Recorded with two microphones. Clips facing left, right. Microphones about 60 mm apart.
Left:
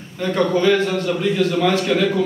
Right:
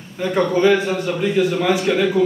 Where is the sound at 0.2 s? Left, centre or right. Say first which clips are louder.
Right 1 dB; centre.